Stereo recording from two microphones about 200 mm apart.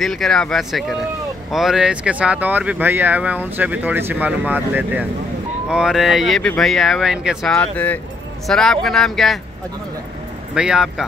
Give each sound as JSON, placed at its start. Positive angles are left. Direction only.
{"t": 0.0, "sound": "speech", "side_deg": 0}
{"t": 10.5, "sound": "speech", "side_deg": -5}